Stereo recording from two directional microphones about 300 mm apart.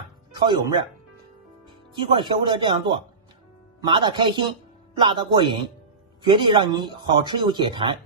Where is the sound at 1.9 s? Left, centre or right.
Centre.